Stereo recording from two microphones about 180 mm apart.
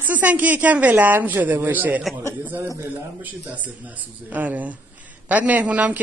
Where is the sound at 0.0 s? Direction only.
10° right (ahead or behind).